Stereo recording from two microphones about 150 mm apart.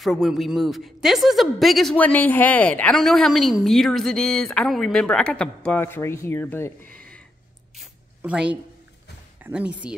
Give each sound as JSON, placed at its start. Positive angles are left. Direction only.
{"t": 0.0, "sound": "speech", "side_deg": 0}
{"t": 8.2, "sound": "speech", "side_deg": -5}